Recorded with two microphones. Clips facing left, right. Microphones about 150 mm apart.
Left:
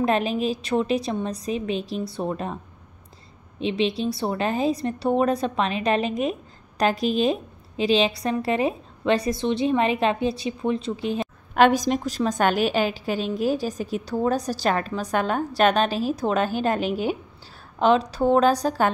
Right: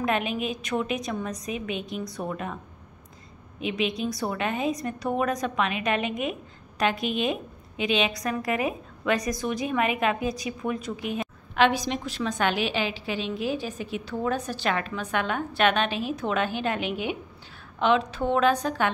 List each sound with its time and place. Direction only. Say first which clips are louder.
0.0 s a woman's voice: left 5 dB; 35° left (ahead or behind)
11.5 s a woman's voice: left 5 dB; 45° left (ahead or behind)